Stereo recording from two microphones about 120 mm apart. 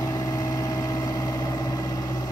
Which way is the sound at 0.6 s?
30° left (ahead or behind).